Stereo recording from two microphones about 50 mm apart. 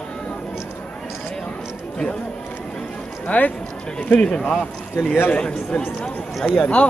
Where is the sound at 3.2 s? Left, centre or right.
Left.